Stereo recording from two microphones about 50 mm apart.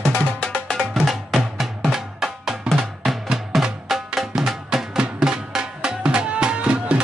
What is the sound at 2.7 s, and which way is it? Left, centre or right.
Drum, centre.